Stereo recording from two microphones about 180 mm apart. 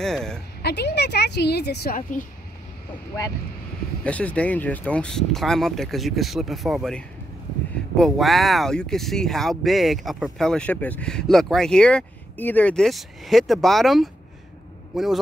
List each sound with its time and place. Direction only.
0.0 s speech: 5° left (ahead or behind)
0.6 s a woman's voice: 65° left (ahead or behind); by 2.2 s 50° left (ahead or behind)
4.0 s speech: 5° left (ahead or behind)